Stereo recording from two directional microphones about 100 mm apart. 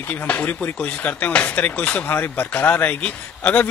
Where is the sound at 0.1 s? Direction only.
15° left (ahead or behind).